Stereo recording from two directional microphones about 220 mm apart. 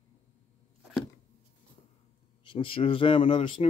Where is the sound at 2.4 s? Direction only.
20° left (ahead or behind).